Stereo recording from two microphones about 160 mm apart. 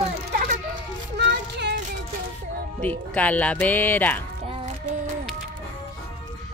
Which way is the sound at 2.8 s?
10° left (ahead or behind).